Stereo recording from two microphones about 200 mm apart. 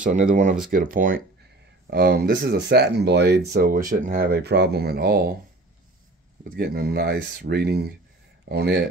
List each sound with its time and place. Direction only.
0.0 s speech: 40° right (ahead or behind)
6.4 s speech: 50° right (ahead or behind)